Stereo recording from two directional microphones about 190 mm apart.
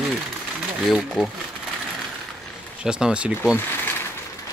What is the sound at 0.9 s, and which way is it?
Speech, centre (ahead or behind).